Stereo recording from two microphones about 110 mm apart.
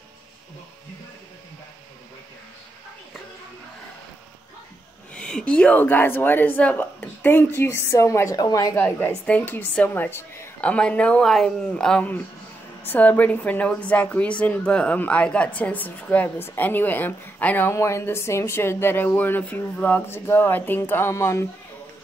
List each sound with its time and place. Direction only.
5.1 s a woman's voice: 10° left (ahead or behind); by 8.7 s 35° left (ahead or behind)
8.7 s a woman's voice: 20° left (ahead or behind)